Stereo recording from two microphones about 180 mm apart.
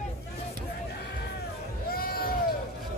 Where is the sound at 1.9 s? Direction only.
55° left (ahead or behind).